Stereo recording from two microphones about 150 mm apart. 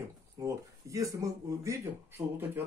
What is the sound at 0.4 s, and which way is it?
Speech, 20° right (ahead or behind).